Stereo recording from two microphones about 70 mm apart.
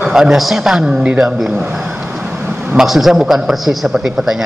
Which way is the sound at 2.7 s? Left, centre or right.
Centre.